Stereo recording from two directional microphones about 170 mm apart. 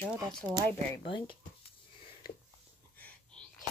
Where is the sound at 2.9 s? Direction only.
10° left (ahead or behind).